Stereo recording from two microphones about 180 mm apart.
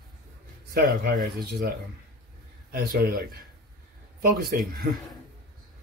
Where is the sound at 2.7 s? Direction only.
55° right (ahead or behind).